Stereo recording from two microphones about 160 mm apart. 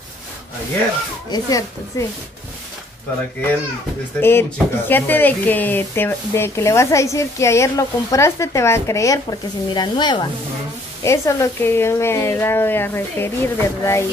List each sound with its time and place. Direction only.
1.3 s speech: 20° left (ahead or behind)
4.2 s speech: 15° left (ahead or behind)